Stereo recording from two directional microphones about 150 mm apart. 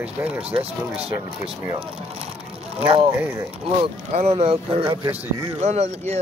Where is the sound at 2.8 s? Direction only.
40° right (ahead or behind).